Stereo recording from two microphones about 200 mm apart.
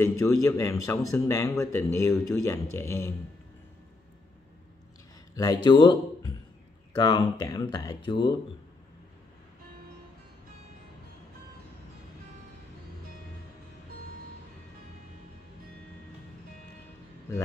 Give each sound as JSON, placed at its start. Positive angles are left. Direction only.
{"t": 0.0, "sound": "a man's voice", "side_deg": 15}
{"t": 5.3, "sound": "speech", "side_deg": 15}